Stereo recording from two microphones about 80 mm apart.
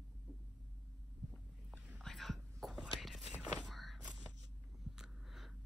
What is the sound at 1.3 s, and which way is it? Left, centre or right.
Boat, centre.